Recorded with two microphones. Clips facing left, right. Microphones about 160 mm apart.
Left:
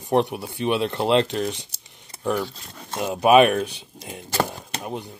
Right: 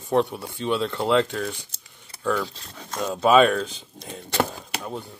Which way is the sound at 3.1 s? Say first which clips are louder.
Left 2 dB; 15° left (ahead or behind).